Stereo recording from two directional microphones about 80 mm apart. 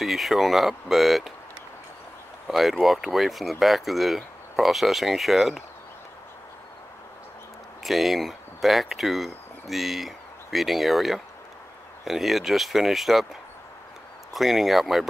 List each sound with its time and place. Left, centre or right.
0.0 s speech: centre
2.4 s speech: centre
7.8 s speech: centre
14.3 s speech: centre